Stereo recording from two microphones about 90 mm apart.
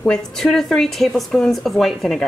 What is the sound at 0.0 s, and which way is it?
Speech, 5° left (ahead or behind).